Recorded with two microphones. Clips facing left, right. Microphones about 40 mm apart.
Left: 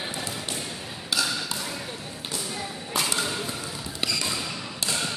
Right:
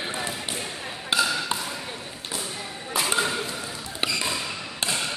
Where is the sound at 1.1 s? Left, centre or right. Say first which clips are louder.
Right 4 dB; right.